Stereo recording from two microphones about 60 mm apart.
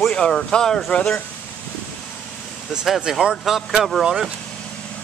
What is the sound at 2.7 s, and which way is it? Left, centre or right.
Speech, centre.